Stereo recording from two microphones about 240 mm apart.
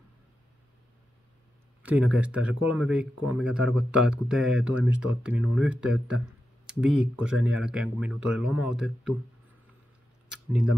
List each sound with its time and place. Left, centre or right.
1.8 s speech: centre